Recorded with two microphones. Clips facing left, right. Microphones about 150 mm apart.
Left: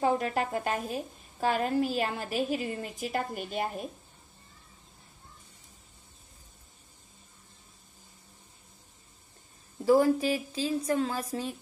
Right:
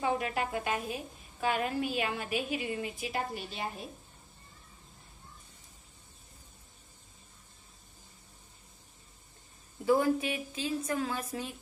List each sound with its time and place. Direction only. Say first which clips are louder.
0.0 s a woman's voice: left 4 dB; 40° left (ahead or behind)
9.8 s a woman's voice: left 4 dB; 35° left (ahead or behind)